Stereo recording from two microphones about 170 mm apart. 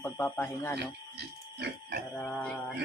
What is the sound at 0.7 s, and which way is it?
Speech, 75° right (ahead or behind).